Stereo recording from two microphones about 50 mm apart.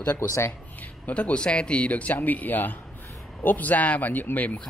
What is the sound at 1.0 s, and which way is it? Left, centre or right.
Speech, left.